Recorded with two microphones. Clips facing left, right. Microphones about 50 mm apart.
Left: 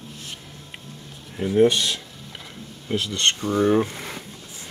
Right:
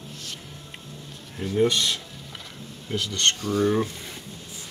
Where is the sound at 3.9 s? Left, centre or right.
Left.